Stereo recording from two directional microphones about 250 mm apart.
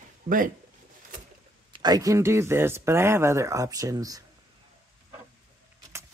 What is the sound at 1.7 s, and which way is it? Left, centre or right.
Speech, centre.